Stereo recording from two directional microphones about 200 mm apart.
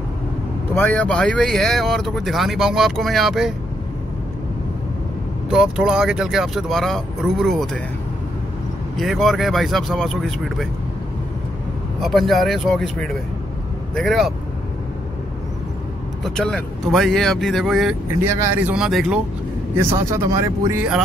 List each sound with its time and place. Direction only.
0.7 s speech: 10° left (ahead or behind)
5.5 s speech: 5° right (ahead or behind)
8.9 s speech: centre (ahead or behind)
12.0 s speech: centre (ahead or behind)
16.3 s speech: 5° left (ahead or behind)
19.8 s speech: 15° right (ahead or behind)